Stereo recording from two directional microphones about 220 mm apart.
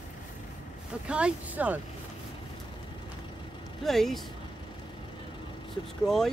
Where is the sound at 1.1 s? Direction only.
5° right (ahead or behind).